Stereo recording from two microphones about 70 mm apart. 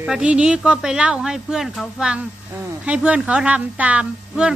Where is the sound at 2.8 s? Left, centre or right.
Centre.